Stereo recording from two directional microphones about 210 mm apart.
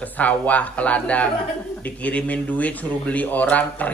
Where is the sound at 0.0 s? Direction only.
5° left (ahead or behind).